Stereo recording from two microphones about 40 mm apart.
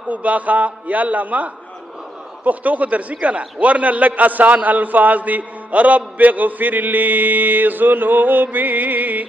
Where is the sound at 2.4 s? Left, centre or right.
Right.